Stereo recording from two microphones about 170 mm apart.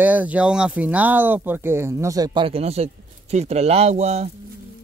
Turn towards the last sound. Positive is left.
turn(degrees=-40)  # may be behind; listen again after turning